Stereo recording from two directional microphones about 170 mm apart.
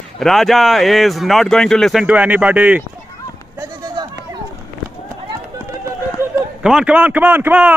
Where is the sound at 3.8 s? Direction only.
20° right (ahead or behind).